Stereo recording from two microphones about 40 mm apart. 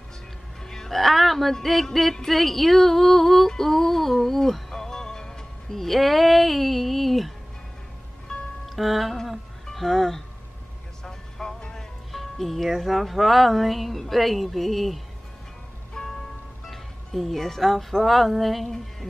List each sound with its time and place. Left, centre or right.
0.7 s music: centre
8.3 s music: centre
8.6 s music: centre
9.7 s speech: centre
11.1 s music: centre
12.1 s music: centre
12.7 s speech: centre
16.0 s music: left
16.6 s speech: centre